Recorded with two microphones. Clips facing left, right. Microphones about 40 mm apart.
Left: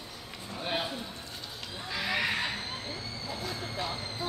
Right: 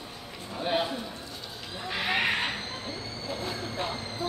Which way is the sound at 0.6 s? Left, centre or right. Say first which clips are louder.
Right 5 dB; centre.